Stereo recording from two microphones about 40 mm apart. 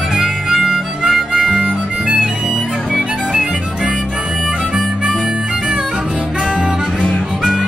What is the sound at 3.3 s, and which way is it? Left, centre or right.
Music, right.